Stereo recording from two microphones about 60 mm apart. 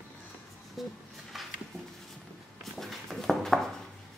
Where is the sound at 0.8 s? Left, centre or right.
Centre.